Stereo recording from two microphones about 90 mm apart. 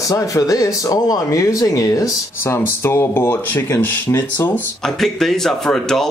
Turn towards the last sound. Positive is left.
turn(degrees=5)  # may be behind; listen again after turning